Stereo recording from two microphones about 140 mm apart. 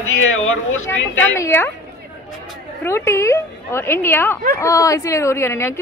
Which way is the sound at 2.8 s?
20° left (ahead or behind).